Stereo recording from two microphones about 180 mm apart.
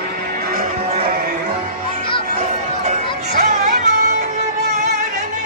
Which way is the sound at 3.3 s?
40° right (ahead or behind).